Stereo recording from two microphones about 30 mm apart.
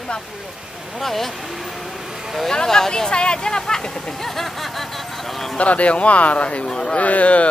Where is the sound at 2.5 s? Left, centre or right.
Centre.